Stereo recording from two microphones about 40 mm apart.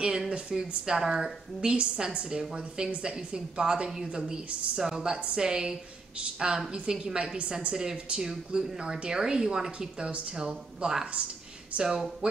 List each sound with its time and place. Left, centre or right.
0.0 s speech: centre